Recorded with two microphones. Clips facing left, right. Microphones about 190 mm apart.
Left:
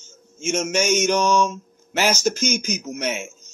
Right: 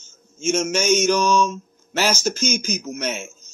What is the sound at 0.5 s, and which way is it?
A man's voice, 15° left (ahead or behind).